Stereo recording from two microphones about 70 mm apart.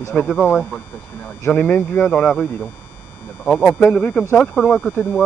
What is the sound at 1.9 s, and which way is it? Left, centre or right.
Speech, centre.